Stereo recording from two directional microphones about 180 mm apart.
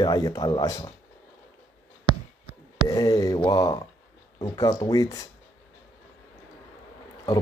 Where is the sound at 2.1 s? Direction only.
25° left (ahead or behind).